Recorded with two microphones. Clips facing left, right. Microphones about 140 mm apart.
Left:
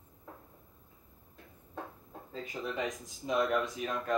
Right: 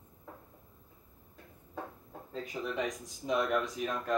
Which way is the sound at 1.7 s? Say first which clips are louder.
Right 1 dB; centre (ahead or behind).